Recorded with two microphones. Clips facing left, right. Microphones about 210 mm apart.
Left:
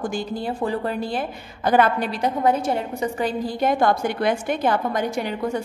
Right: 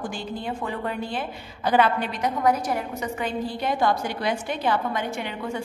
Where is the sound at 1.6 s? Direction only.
45° left (ahead or behind).